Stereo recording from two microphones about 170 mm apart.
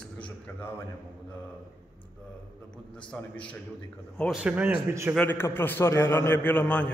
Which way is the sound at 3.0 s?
5° left (ahead or behind).